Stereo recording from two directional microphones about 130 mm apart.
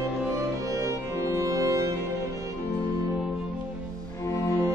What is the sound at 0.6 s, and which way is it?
Music, 25° right (ahead or behind).